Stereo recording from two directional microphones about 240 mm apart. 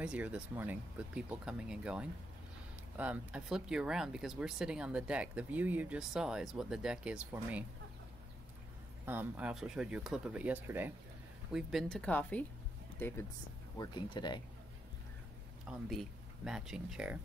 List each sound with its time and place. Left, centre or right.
0.0 s speech: centre
9.0 s speech: centre
15.6 s speech: centre